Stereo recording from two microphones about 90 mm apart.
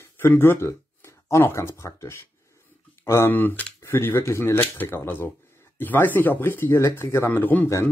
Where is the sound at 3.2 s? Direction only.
20° left (ahead or behind).